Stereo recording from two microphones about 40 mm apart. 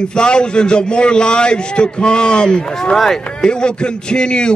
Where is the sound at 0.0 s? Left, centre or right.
Left.